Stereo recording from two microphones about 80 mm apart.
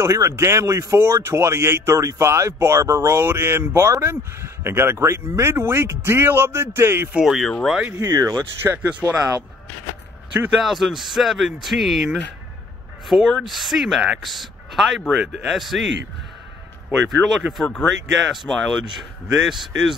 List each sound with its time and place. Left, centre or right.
0.0 s speech: right
7.2 s speech: centre
7.9 s speech: right
8.6 s speech: right
10.6 s speech: centre
17.1 s speech: centre